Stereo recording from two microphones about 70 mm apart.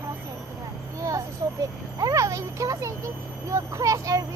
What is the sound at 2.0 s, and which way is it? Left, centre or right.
Speech, right.